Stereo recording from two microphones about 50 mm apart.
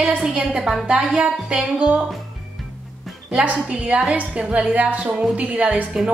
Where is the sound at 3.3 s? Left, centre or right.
Right.